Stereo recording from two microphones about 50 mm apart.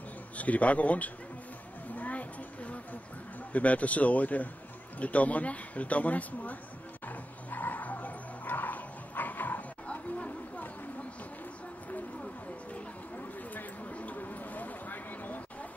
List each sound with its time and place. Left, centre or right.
0.4 s a man's voice: left
2.0 s a sound: left
3.5 s a man's voice: left
7.1 s dog: left
9.9 s chatter: left
13.6 s a sound: left